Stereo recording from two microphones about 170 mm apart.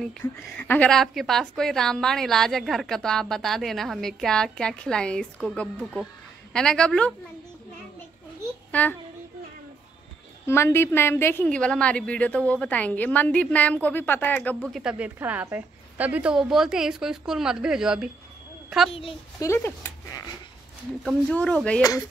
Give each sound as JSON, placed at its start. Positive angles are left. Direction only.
{"t": 0.2, "sound": "a woman's voice", "side_deg": 10}
{"t": 8.7, "sound": "a woman's voice", "side_deg": 10}
{"t": 10.4, "sound": "a woman's voice", "side_deg": 15}
{"t": 14.8, "sound": "a woman's voice", "side_deg": -5}
{"t": 18.9, "sound": "a child's voice", "side_deg": 35}
{"t": 19.4, "sound": "speech", "side_deg": 15}
{"t": 21.0, "sound": "a woman's voice", "side_deg": 5}